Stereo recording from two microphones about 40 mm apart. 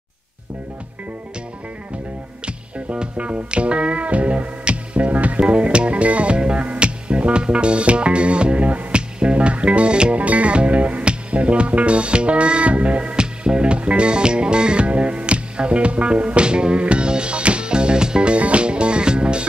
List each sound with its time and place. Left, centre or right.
2.4 s music: right